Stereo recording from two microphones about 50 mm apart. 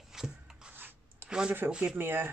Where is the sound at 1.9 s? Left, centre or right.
Right.